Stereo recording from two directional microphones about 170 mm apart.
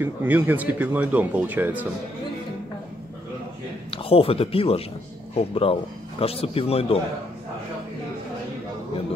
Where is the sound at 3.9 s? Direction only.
35° left (ahead or behind).